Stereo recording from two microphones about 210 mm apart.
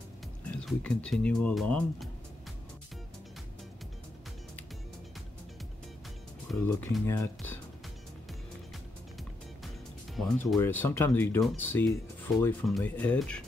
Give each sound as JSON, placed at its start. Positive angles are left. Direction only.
{"t": 0.5, "sound": "speech", "side_deg": 5}
{"t": 6.6, "sound": "speech", "side_deg": 10}
{"t": 10.1, "sound": "speech", "side_deg": 0}